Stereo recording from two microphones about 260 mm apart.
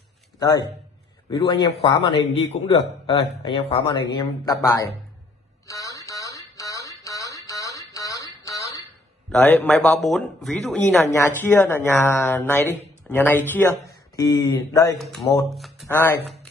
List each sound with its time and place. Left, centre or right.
1.5 s speech: centre
5.7 s a sound: centre
9.3 s speech: centre
15.0 s speech: centre